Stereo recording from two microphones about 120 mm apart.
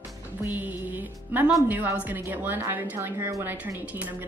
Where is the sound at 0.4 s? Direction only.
15° right (ahead or behind).